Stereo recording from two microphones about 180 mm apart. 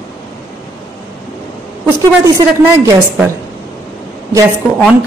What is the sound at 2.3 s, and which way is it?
Speech, 15° right (ahead or behind).